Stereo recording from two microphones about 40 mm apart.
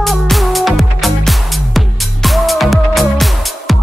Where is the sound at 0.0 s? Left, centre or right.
Centre.